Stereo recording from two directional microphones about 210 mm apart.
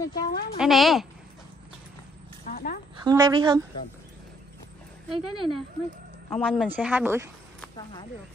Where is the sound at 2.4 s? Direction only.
45° left (ahead or behind).